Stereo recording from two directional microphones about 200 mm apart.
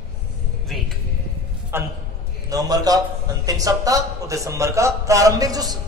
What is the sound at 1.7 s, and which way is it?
A man's voice, 10° right (ahead or behind).